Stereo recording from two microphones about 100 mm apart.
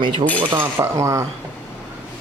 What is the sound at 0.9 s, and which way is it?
Speech, 35° right (ahead or behind).